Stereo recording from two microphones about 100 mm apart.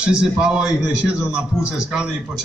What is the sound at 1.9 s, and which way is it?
Speech, 5° right (ahead or behind).